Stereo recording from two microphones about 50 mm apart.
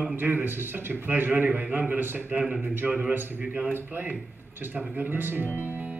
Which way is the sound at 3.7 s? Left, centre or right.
Right.